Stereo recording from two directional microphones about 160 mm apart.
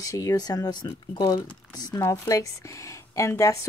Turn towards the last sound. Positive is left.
turn(degrees=20)  # may be behind; listen again after turning